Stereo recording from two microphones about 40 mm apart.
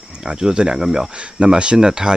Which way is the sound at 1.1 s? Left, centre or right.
Right.